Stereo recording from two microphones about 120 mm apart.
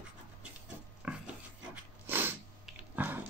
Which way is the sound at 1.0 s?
10° right (ahead or behind).